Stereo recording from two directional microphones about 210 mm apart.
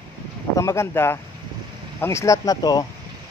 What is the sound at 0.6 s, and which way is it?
Speech, 15° left (ahead or behind).